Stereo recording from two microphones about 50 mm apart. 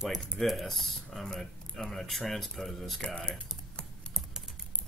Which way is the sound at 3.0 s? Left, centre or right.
Centre.